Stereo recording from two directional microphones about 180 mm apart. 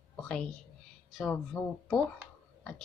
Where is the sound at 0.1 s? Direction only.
5° left (ahead or behind).